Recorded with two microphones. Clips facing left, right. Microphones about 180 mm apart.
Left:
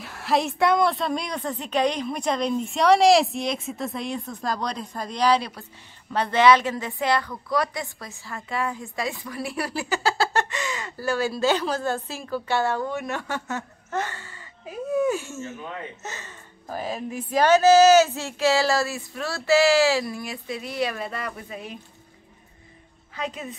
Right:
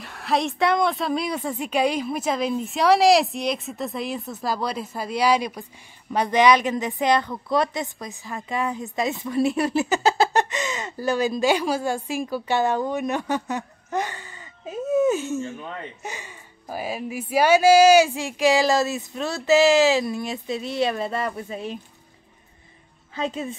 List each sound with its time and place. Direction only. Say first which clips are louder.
0.0 s a woman's voice: even; centre (ahead or behind); by 21.7 s 30° right (ahead or behind)
23.1 s a woman's voice: right 4 dB; 25° right (ahead or behind)